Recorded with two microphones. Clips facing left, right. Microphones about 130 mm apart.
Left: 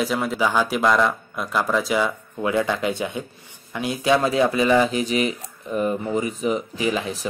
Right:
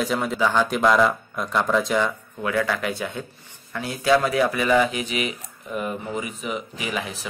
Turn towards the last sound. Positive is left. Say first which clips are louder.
# left 5 dB
turn(degrees=35)  # may be behind; listen again after turning